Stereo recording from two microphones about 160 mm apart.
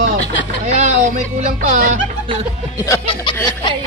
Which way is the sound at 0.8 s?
55° right (ahead or behind).